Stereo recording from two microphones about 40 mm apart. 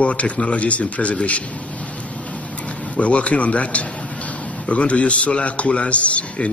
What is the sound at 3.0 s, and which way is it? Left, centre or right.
A man's voice, left.